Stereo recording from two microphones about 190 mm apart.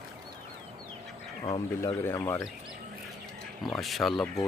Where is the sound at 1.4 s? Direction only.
25° left (ahead or behind).